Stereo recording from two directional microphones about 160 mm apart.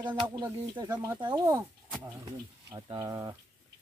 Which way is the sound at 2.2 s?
30° right (ahead or behind).